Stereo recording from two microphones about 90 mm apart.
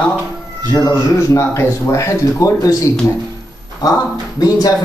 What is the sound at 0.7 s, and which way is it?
Speech, 35° left (ahead or behind).